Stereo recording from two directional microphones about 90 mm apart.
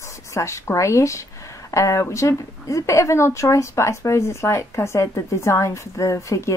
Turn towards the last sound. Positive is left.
turn(degrees=35)  # may be behind; listen again after turning